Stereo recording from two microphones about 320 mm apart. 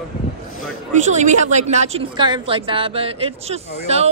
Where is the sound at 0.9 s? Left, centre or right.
Right.